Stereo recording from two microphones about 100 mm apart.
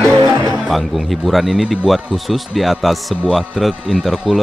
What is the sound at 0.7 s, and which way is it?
Speech, centre (ahead or behind).